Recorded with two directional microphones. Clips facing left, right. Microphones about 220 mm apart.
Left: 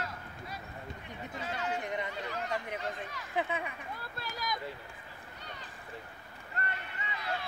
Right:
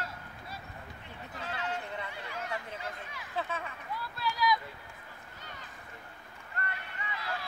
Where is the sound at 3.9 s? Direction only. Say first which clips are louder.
Right 5 dB; 50° left (ahead or behind).